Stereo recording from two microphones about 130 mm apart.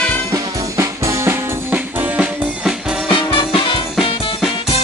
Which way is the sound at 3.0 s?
40° left (ahead or behind).